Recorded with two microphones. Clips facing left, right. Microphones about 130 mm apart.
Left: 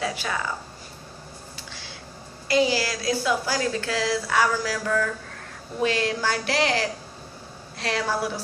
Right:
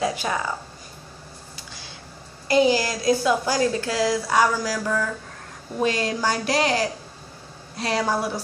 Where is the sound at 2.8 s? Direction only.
20° right (ahead or behind).